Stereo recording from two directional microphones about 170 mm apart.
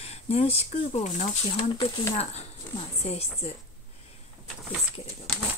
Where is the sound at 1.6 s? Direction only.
25° left (ahead or behind).